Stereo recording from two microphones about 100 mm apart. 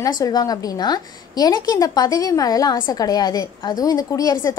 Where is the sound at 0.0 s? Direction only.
40° left (ahead or behind).